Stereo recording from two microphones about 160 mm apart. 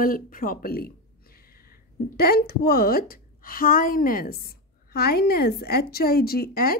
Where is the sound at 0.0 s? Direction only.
60° left (ahead or behind).